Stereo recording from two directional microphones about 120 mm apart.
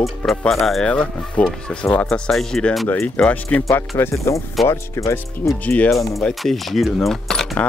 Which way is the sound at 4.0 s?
25° left (ahead or behind).